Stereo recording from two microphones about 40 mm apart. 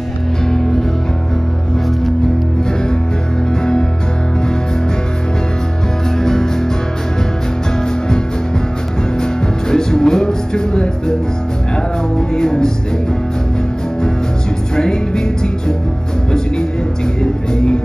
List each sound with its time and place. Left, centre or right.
0.5 s music: centre
9.2 s music: centre
12.4 s music: centre
14.8 s music: centre
17.2 s music: centre